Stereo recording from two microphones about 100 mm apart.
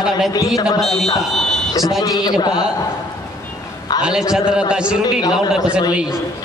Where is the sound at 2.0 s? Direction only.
40° left (ahead or behind).